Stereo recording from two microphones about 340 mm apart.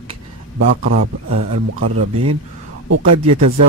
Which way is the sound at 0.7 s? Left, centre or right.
Right.